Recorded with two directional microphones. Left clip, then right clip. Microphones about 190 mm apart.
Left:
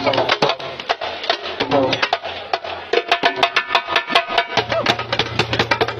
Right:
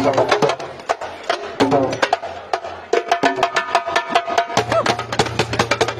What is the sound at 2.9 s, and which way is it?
Music, 15° right (ahead or behind).